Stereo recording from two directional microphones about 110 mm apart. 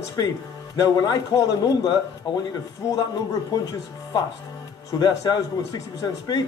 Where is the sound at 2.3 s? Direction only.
50° left (ahead or behind).